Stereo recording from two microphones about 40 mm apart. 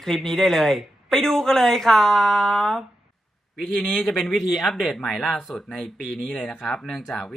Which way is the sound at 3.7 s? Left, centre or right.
Left.